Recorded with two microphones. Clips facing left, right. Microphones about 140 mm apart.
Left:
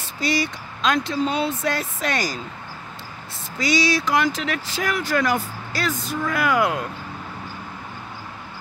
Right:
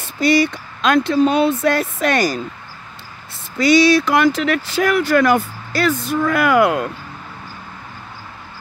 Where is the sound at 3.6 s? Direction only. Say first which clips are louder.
Right 9 dB; 60° right (ahead or behind).